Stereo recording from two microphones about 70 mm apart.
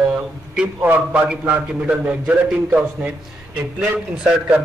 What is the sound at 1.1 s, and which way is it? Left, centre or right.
A man's voice, centre.